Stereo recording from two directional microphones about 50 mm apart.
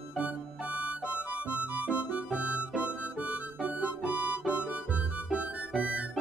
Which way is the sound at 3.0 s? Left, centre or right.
Right.